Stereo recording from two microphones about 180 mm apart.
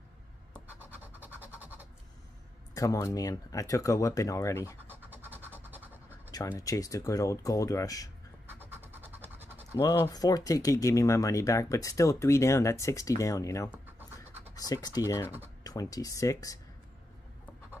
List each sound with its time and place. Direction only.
1.0 s scratch: 10° right (ahead or behind)
2.7 s speech: 20° left (ahead or behind)
4.8 s a sound: 10° right (ahead or behind)
6.3 s speech: 20° left (ahead or behind)
8.5 s pant: 10° right (ahead or behind)
9.8 s speech: 20° left (ahead or behind)